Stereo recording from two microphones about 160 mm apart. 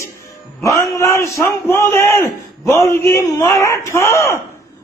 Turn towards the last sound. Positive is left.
turn(degrees=20)  # may be behind; listen again after turning